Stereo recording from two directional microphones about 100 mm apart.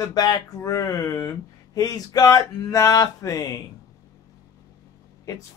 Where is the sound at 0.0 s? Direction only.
40° left (ahead or behind).